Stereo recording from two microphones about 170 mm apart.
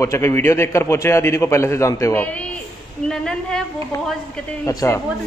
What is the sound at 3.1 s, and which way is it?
Speech, 5° left (ahead or behind).